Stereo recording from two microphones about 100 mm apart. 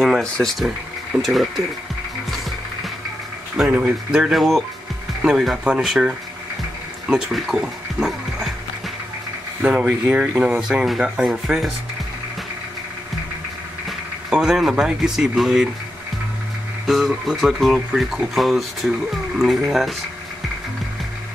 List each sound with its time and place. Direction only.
0.0 s speech: 5° left (ahead or behind)
3.5 s speech: 15° right (ahead or behind)
9.6 s speech: 10° right (ahead or behind)
13.8 s speech: 5° right (ahead or behind)
16.8 s speech: 5° right (ahead or behind)